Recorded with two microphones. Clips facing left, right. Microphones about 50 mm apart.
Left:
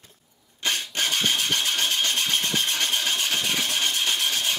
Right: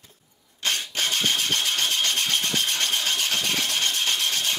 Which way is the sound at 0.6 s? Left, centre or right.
Centre.